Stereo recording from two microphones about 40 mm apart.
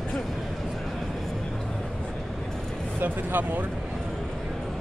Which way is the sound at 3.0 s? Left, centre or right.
Right.